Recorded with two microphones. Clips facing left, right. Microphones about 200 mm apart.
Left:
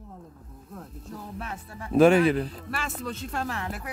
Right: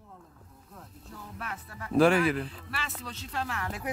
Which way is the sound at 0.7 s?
45° left (ahead or behind).